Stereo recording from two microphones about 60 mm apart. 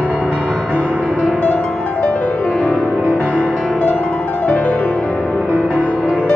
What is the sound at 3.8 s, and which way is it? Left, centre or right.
Music, left.